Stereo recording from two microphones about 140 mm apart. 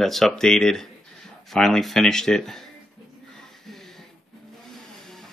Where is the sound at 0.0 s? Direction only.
Centre (ahead or behind).